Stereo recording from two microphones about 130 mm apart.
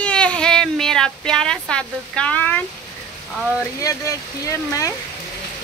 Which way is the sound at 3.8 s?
25° left (ahead or behind).